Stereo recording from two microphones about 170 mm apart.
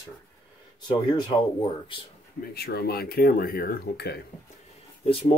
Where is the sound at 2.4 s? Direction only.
70° left (ahead or behind).